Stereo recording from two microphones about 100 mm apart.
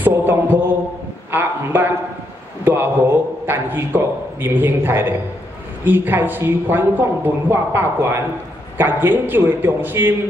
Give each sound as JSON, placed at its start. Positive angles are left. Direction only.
{"t": 0.0, "sound": "mantra", "side_deg": -20}
{"t": 1.3, "sound": "a man's voice", "side_deg": -20}